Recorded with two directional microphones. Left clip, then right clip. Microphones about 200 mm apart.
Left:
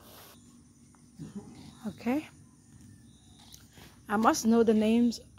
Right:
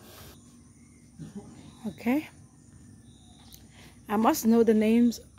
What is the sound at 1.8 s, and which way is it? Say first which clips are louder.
Speech: right 3 dB; 20° right (ahead or behind).